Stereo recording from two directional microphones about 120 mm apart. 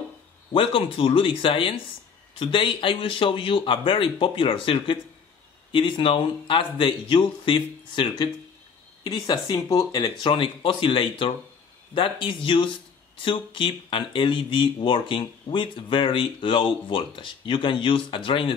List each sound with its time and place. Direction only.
0.5 s speech: 45° left (ahead or behind); by 10.1 s 30° left (ahead or behind)
10.2 s speech: 45° left (ahead or behind)